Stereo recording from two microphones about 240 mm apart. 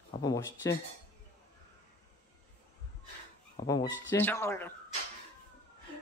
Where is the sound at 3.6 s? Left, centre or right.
Centre.